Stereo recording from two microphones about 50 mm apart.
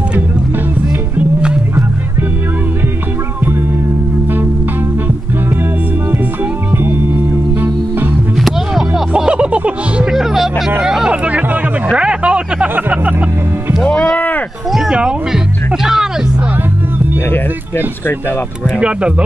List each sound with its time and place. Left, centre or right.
6.8 s music: right
8.4 s music: centre
9.1 s music: right
10.1 s music: centre
10.8 s hubbub: centre
11.9 s music: right
14.1 s a sound: left
14.7 s a sound: centre
15.0 s music: centre
17.3 s a sound: left
18.8 s speech: right